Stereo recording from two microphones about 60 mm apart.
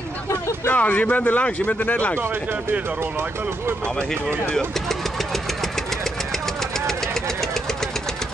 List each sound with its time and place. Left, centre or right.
0.7 s a man's voice: left
3.0 s speech: right
4.8 s engine: centre